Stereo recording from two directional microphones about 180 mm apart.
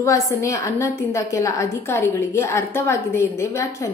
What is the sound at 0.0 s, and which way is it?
A woman's voice, 15° left (ahead or behind).